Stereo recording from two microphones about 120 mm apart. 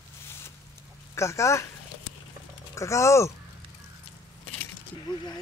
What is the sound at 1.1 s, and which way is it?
Speech, 25° left (ahead or behind).